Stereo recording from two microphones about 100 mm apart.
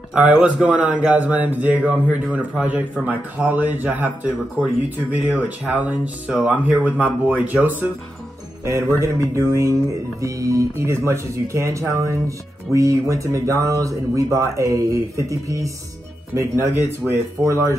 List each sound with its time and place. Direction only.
0.1 s a man's voice: 10° right (ahead or behind); by 17.6 s 30° right (ahead or behind)